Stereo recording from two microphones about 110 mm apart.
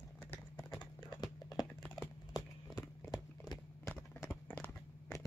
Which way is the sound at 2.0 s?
35° left (ahead or behind).